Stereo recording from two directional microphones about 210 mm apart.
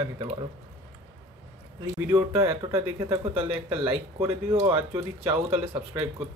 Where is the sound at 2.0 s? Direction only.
15° right (ahead or behind).